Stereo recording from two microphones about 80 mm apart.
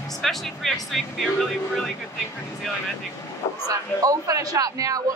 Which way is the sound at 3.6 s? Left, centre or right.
Right.